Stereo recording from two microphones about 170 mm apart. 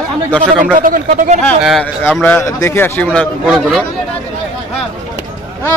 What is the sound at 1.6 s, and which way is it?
A man's voice, centre (ahead or behind).